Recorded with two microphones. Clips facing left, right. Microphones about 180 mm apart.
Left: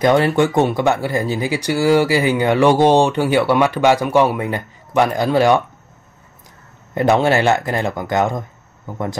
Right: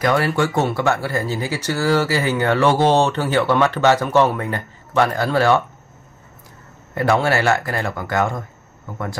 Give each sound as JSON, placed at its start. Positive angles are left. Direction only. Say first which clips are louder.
{"t": 0.0, "sound": "speech", "louder": "left 4 dB", "side_deg": 20}
{"t": 6.9, "sound": "speech", "louder": "left 3 dB", "side_deg": 20}